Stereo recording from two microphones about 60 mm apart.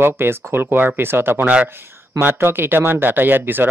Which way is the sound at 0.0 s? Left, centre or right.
Right.